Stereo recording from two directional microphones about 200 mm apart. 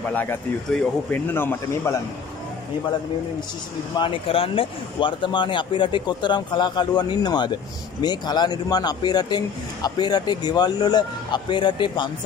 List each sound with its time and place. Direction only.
0.1 s speech: 10° left (ahead or behind)
3.9 s a man's voice: 25° left (ahead or behind)